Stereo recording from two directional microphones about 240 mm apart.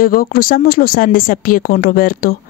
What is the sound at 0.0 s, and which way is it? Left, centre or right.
A woman's voice, left.